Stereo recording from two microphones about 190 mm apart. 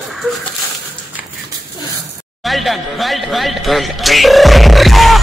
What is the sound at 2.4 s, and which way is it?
Speech, centre (ahead or behind).